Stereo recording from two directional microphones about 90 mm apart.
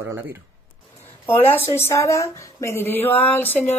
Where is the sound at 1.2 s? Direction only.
25° left (ahead or behind).